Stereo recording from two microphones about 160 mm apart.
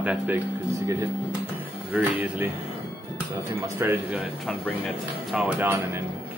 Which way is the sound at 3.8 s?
10° right (ahead or behind).